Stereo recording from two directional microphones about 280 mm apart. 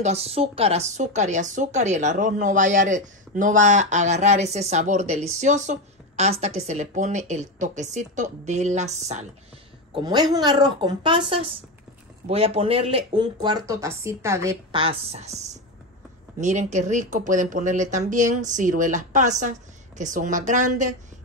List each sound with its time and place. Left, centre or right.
0.0 s speech: right